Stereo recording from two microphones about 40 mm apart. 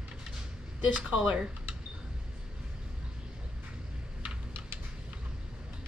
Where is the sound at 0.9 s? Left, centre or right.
Right.